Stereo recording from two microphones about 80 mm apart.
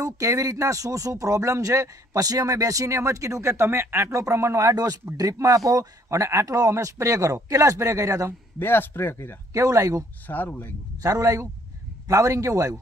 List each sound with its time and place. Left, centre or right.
0.0 s speech: right
4.7 s speech: right
8.5 s speech: left
9.5 s speech: right
10.2 s speech: left
11.0 s speech: right